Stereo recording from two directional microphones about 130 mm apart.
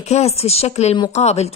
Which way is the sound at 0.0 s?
55° left (ahead or behind).